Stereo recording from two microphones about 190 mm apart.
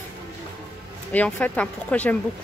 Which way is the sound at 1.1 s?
5° left (ahead or behind).